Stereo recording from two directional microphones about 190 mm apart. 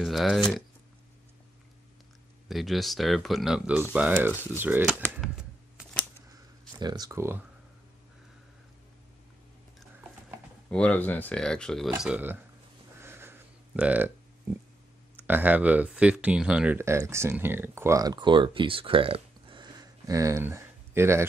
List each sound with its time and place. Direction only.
0.0 s speech: centre (ahead or behind)
2.4 s speech: centre (ahead or behind)
5.0 s a sound: centre (ahead or behind)
6.8 s speech: 20° right (ahead or behind)
10.7 s speech: 5° left (ahead or behind)
12.0 s speech: 10° right (ahead or behind)
13.0 s burping: 10° right (ahead or behind)
15.1 s speech: 10° right (ahead or behind)